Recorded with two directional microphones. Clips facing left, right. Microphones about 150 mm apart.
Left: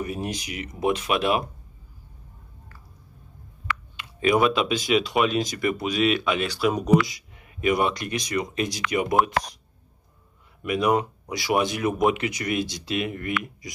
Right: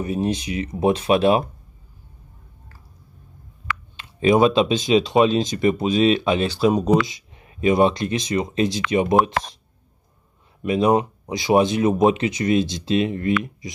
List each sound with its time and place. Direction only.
0.0 s speech: 25° right (ahead or behind)
3.9 s speech: 25° right (ahead or behind)
10.6 s speech: 25° right (ahead or behind)